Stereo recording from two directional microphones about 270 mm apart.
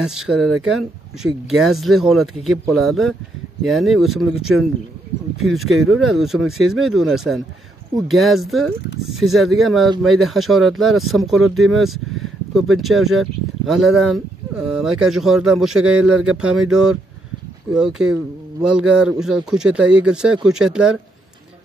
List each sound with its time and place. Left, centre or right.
0.0 s speech: centre